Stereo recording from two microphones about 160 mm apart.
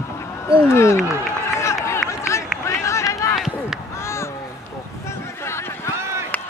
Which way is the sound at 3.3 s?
Centre (ahead or behind).